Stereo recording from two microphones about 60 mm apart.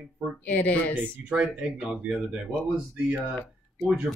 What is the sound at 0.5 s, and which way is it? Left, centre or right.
Speech, left.